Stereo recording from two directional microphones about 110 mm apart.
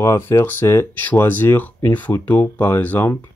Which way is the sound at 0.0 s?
25° left (ahead or behind).